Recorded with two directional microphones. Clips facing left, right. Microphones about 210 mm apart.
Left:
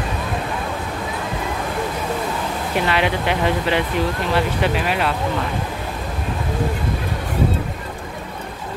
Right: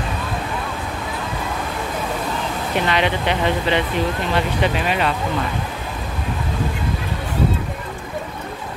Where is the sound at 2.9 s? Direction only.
5° left (ahead or behind).